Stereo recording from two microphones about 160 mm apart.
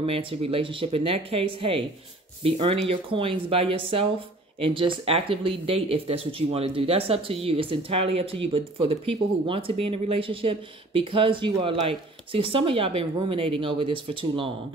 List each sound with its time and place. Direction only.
0.0 s speech: 35° right (ahead or behind)